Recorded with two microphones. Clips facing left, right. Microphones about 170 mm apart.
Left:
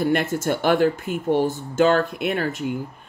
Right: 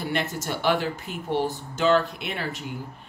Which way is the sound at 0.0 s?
50° left (ahead or behind).